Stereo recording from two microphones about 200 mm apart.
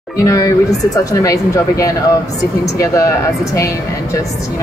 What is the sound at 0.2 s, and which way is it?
Speech, 15° left (ahead or behind).